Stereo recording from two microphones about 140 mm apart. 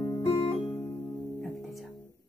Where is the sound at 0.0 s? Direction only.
20° left (ahead or behind).